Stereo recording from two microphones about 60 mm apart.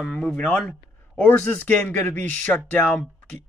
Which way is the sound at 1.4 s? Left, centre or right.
Left.